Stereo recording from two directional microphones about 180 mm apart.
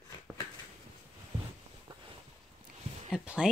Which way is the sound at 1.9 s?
30° right (ahead or behind).